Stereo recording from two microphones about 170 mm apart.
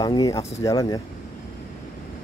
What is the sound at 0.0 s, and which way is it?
Speech, 25° left (ahead or behind).